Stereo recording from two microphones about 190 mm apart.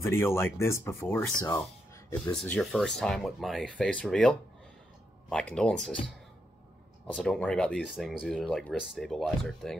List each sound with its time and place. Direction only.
0.0 s speech: 15° left (ahead or behind)
7.2 s speech: 5° left (ahead or behind)